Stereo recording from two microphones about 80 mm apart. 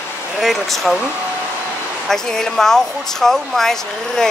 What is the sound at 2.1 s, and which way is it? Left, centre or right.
Speech, centre.